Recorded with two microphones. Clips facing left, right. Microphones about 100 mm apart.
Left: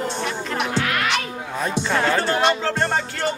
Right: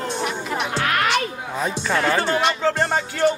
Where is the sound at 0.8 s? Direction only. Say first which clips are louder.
Right 2 dB; 40° right (ahead or behind).